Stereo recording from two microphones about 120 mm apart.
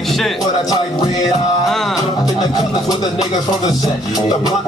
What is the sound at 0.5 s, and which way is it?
Music, 35° left (ahead or behind).